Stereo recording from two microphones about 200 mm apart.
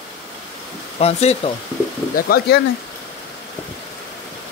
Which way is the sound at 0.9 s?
30° left (ahead or behind).